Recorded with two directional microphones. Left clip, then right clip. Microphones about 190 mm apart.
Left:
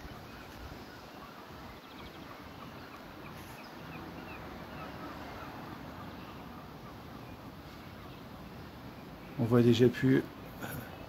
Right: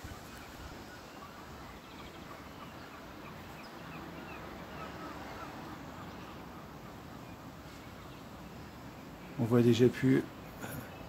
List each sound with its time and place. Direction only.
9.4 s speech: 10° right (ahead or behind)